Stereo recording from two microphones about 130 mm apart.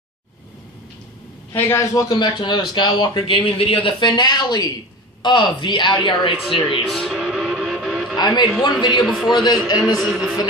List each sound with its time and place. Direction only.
1.5 s a man's voice: 20° left (ahead or behind); by 6.3 s 40° left (ahead or behind)
6.7 s music: centre (ahead or behind)
8.2 s a man's voice: 35° left (ahead or behind)
8.5 s a man's voice: centre (ahead or behind)
9.3 s a man's voice: 30° left (ahead or behind)
9.8 s a man's voice: 5° right (ahead or behind)